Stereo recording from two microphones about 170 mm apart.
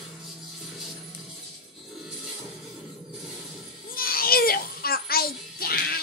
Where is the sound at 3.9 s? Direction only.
60° left (ahead or behind).